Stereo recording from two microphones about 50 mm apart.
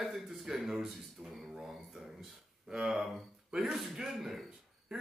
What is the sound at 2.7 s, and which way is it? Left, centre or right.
Speech, centre.